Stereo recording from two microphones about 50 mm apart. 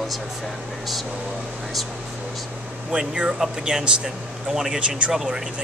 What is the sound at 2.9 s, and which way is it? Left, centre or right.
Speech, centre.